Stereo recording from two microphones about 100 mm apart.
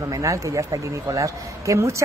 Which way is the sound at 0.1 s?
30° right (ahead or behind).